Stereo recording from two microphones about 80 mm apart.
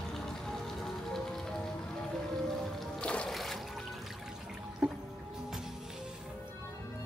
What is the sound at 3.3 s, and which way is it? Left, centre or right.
Trickle, centre.